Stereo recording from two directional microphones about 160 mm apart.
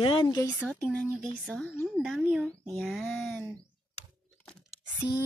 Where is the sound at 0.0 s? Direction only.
30° left (ahead or behind).